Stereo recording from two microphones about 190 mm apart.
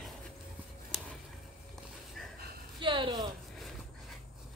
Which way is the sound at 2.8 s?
25° right (ahead or behind).